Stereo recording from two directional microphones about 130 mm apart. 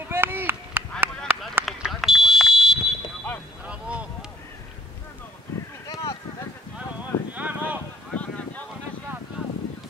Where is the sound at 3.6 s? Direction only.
10° right (ahead or behind).